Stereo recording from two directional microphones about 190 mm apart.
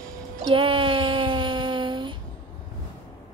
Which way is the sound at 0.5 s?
25° right (ahead or behind).